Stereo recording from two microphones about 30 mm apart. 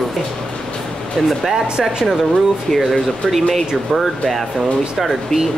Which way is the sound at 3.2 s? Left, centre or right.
Left.